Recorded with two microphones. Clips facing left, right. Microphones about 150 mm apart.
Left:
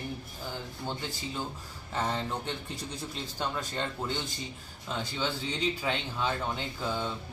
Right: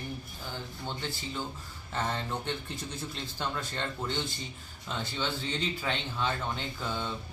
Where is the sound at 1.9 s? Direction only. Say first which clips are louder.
Left 1 dB; 10° left (ahead or behind).